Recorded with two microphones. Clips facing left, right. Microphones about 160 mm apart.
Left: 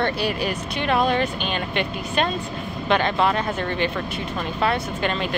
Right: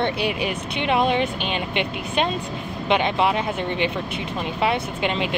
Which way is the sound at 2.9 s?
15° right (ahead or behind).